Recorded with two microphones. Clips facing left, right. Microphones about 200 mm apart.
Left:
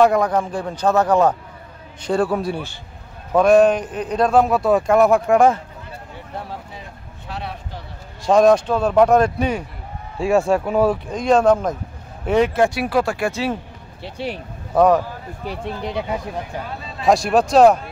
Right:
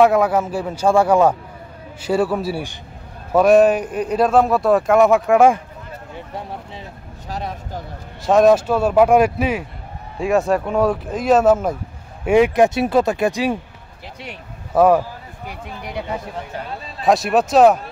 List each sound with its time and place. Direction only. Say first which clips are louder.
0.0 s a man's voice: right 1 dB; 5° right (ahead or behind)
7.2 s a sound: right 3 dB; 40° right (ahead or behind)
8.3 s a man's voice: right 1 dB; 5° right (ahead or behind)
14.0 s speech: left 8 dB; 30° left (ahead or behind)
14.7 s speech: right 1 dB; 5° right (ahead or behind)
15.4 s speech: left 6 dB; 30° left (ahead or behind)
17.0 s a man's voice: even; centre (ahead or behind)